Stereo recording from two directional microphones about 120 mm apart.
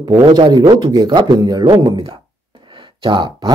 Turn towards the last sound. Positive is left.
turn(degrees=-40)  # may be behind; listen again after turning